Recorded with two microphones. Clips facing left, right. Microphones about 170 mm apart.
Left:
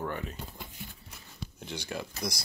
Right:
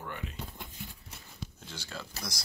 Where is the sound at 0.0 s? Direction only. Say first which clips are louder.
Left 6 dB; 45° left (ahead or behind).